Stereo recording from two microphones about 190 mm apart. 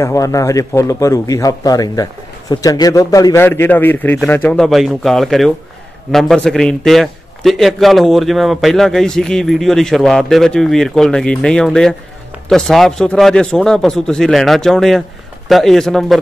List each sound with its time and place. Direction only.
0.0 s a man's voice: 15° left (ahead or behind); by 16.2 s centre (ahead or behind)